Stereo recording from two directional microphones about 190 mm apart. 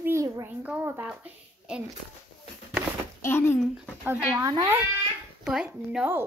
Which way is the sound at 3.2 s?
10° left (ahead or behind).